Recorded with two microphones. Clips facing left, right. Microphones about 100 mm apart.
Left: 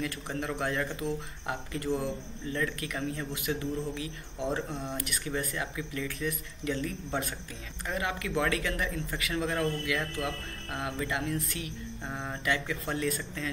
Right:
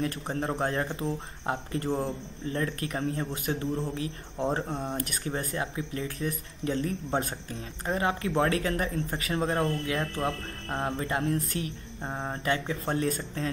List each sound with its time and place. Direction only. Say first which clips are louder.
0.0 s speech: right 4 dB; 35° right (ahead or behind)